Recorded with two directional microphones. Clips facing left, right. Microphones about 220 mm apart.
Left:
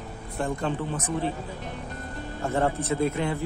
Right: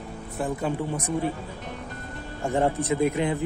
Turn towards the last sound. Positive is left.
turn(degrees=-15)  # may be behind; listen again after turning